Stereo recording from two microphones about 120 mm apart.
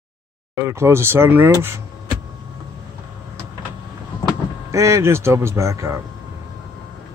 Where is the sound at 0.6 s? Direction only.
20° right (ahead or behind).